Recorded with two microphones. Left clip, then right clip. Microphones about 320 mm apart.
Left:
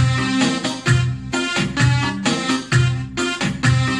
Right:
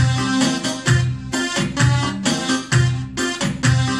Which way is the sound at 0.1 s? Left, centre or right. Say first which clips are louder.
Left 1 dB; centre.